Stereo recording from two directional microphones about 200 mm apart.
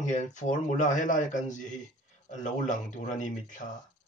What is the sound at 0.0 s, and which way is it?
Speech, 35° left (ahead or behind).